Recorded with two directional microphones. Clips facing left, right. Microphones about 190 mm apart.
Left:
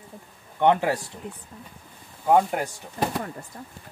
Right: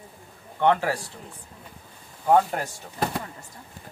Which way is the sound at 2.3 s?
10° left (ahead or behind).